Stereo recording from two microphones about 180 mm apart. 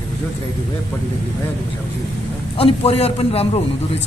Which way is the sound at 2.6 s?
30° left (ahead or behind).